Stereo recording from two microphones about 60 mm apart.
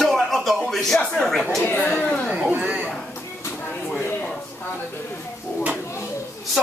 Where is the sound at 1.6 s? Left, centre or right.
Left.